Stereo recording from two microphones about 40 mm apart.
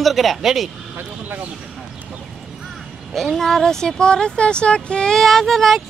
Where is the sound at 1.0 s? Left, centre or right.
Right.